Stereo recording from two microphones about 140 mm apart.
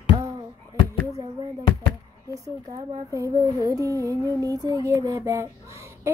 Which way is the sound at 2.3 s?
25° right (ahead or behind).